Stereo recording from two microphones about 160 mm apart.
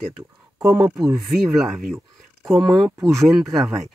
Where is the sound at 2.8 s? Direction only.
20° right (ahead or behind).